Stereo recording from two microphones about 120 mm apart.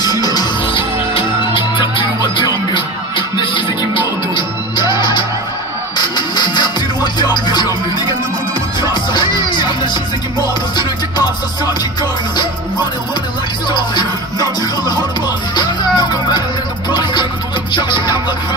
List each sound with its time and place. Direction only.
0.0 s music: 35° left (ahead or behind)
8.9 s music: 40° left (ahead or behind)
13.7 s music: 35° left (ahead or behind)
17.7 s music: 40° left (ahead or behind)